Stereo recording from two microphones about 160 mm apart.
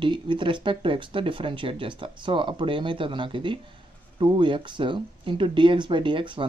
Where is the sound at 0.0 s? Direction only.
30° right (ahead or behind).